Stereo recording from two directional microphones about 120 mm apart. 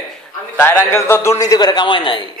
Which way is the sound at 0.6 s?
20° left (ahead or behind).